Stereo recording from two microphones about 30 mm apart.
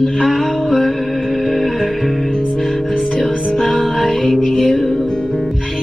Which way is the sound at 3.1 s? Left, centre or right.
Left.